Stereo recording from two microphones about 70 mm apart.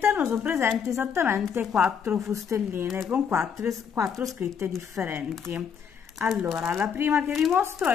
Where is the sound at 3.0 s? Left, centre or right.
Right.